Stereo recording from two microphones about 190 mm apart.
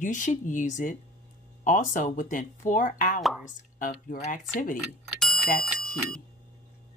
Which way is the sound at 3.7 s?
45° left (ahead or behind).